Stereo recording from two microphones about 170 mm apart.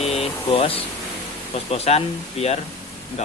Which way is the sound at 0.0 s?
35° left (ahead or behind).